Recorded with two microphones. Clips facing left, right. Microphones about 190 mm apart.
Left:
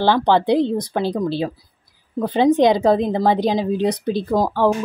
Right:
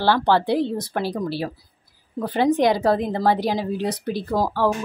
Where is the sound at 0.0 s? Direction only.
20° left (ahead or behind).